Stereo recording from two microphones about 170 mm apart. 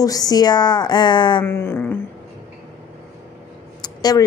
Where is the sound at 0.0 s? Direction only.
20° left (ahead or behind).